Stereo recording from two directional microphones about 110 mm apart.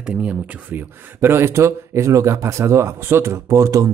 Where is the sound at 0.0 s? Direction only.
10° right (ahead or behind).